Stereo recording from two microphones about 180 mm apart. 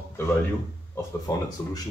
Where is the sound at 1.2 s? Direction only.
20° left (ahead or behind).